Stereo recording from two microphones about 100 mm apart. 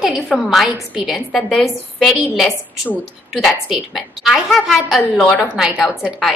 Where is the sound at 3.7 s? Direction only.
Centre (ahead or behind).